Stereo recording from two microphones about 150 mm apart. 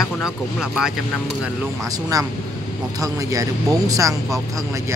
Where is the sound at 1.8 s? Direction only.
25° right (ahead or behind).